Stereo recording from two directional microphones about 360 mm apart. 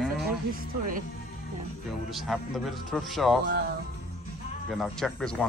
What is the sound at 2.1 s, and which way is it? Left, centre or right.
Speech, centre.